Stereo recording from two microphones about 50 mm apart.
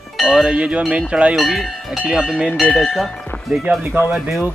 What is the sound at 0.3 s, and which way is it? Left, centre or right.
Speech, centre.